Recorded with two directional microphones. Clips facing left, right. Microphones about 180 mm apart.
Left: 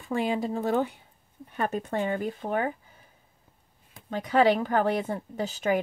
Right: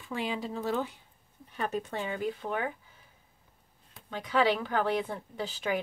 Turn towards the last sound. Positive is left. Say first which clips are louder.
# left 6 dB
turn(degrees=45)  # may be behind; listen again after turning